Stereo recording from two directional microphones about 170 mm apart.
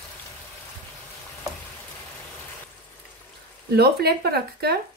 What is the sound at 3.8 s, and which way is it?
Speech, 70° right (ahead or behind).